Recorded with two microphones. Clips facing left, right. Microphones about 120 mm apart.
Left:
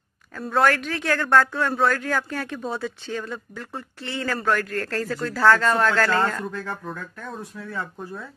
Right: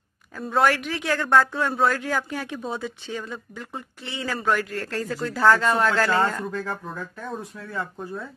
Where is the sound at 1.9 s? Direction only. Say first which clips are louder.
Left 1 dB; 15° right (ahead or behind).